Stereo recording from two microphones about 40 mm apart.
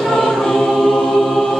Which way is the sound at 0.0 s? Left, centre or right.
Centre.